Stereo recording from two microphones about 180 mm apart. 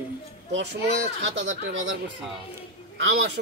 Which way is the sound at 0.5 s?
80° right.